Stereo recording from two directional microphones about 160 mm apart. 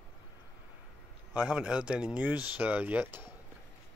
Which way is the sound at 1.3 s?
5° right (ahead or behind).